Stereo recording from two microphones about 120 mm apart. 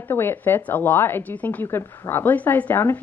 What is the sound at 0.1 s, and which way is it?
A woman's voice, 15° left (ahead or behind).